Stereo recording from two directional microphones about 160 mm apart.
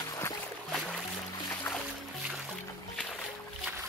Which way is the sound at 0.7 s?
5° left (ahead or behind).